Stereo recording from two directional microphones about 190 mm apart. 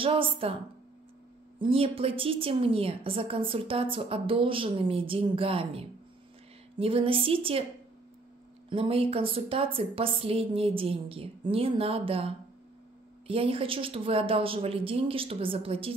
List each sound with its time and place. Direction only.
0.0 s a woman's voice: 30° right (ahead or behind)
1.6 s a woman's voice: 30° right (ahead or behind)
8.6 s a woman's voice: 30° right (ahead or behind)